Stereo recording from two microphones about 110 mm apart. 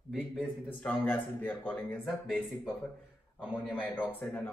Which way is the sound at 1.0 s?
15° left (ahead or behind).